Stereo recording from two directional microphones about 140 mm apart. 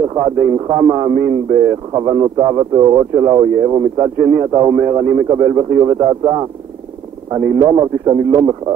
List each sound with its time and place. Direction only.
0.1 s a man's voice: 30° right (ahead or behind)